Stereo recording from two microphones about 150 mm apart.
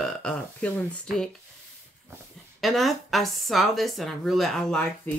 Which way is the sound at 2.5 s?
Centre (ahead or behind).